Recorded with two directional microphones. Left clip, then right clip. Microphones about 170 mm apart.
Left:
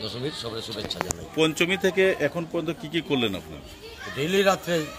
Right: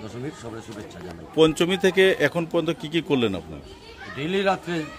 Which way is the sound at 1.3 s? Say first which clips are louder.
Right 4 dB; 40° right (ahead or behind).